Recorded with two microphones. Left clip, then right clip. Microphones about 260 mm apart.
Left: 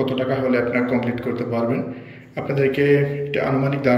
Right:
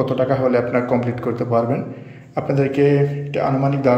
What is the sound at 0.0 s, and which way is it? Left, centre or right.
A man's voice, centre.